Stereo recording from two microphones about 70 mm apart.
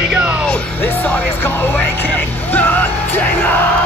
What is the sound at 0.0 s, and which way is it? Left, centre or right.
Music, centre.